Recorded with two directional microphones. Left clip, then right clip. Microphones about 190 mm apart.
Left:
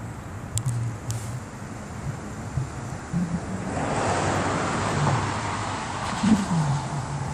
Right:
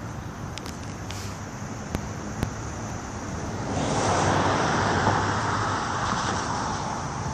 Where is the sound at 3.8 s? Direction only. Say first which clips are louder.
Right 1 dB; 25° left (ahead or behind).